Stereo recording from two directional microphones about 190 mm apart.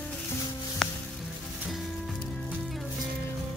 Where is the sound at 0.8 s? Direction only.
Centre (ahead or behind).